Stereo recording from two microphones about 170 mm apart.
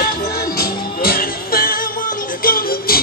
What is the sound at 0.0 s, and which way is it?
Music, 65° left (ahead or behind).